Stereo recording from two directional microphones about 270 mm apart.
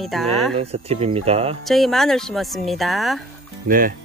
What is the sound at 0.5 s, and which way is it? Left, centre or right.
Speech, right.